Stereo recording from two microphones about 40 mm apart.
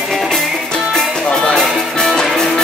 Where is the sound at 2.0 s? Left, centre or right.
Centre.